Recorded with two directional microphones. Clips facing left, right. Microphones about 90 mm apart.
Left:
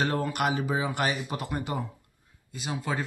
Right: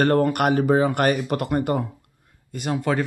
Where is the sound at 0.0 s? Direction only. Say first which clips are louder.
Right 8 dB; 55° right (ahead or behind).